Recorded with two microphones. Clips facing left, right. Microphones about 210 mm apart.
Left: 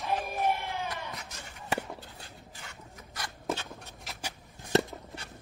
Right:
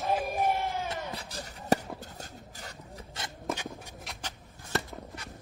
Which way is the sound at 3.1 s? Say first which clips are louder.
Left 1 dB; 20° right (ahead or behind).